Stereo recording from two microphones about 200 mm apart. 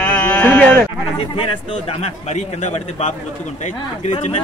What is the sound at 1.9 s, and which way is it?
Speech, 30° left (ahead or behind).